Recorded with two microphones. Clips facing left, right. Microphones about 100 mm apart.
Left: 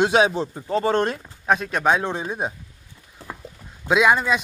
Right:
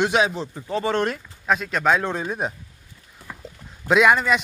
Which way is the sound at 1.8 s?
15° left (ahead or behind).